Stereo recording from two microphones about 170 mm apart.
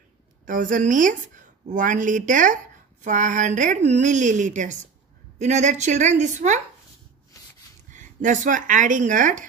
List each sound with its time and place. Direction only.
0.5 s a woman's voice: 50° right (ahead or behind)
7.9 s speech: 50° right (ahead or behind)